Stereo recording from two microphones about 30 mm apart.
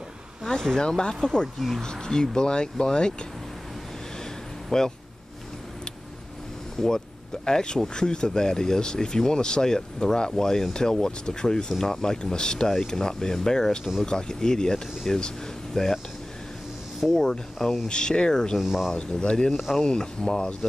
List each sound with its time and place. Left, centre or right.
0.5 s speech: left
4.6 s speech: centre
6.8 s speech: centre
17.1 s speech: centre
17.8 s speech: left
18.6 s speech: centre
19.1 s speech: left